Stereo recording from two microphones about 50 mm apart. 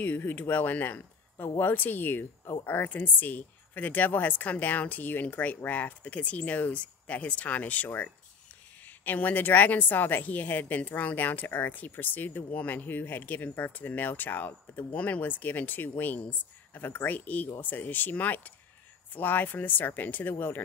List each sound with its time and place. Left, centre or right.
0.0 s a woman's voice: left